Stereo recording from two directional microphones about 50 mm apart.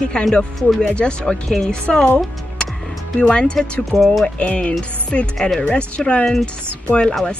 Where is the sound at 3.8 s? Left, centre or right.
Centre.